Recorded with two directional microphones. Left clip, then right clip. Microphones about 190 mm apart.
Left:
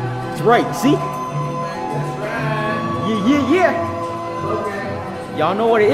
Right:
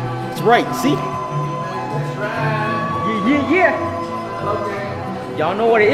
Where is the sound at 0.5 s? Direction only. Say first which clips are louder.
Even; 25° left (ahead or behind).